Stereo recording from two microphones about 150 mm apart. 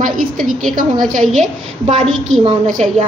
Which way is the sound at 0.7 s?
65° right (ahead or behind).